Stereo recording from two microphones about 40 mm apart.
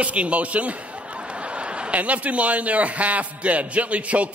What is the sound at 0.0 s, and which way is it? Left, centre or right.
A man's voice, right.